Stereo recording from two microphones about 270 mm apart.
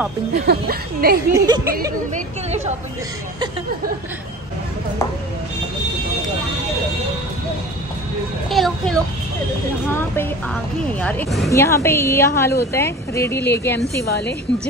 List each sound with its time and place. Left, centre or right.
0.3 s speech: right
1.3 s speech: centre
2.1 s a woman's voice: right
8.5 s a woman's voice: centre
13.7 s a woman's voice: left